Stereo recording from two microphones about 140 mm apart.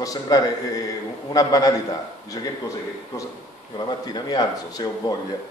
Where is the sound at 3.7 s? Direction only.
30° left (ahead or behind).